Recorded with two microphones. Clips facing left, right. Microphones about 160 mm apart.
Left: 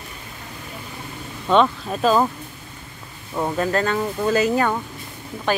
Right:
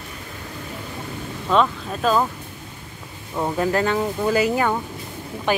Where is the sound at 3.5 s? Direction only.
10° right (ahead or behind).